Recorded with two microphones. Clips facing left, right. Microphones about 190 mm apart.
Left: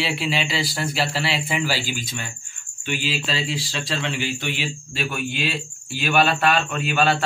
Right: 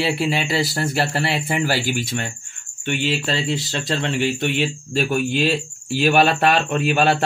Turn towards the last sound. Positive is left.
turn(degrees=-45)  # may be behind; listen again after turning